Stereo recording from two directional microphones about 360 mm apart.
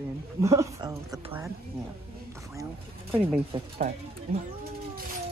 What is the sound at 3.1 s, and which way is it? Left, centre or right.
Speech, centre.